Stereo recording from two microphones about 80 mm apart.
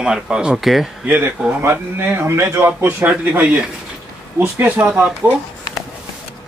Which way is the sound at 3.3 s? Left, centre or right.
Centre.